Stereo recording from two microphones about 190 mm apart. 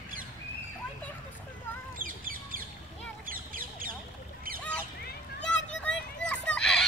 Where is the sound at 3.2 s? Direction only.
50° right (ahead or behind).